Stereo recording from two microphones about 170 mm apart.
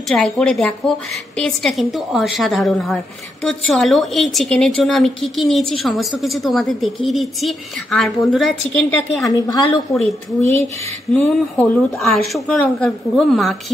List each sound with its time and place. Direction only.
0.1 s a woman's voice: 5° left (ahead or behind)
9.3 s speech: 20° left (ahead or behind)
11.1 s a woman's voice: centre (ahead or behind)